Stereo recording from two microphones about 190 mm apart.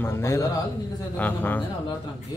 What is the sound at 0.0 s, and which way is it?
A man's voice, 15° left (ahead or behind).